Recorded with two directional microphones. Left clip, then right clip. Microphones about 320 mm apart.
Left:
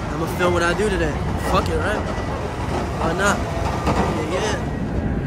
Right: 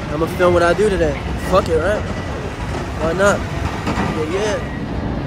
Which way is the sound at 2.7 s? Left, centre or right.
Left.